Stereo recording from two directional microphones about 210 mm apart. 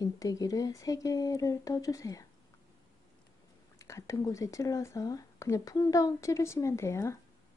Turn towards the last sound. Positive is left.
turn(degrees=15)  # may be behind; listen again after turning